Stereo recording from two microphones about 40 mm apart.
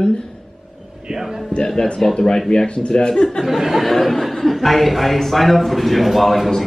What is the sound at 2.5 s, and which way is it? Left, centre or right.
Speech, left.